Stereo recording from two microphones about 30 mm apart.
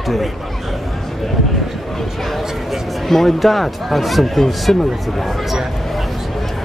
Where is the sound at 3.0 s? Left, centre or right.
Centre.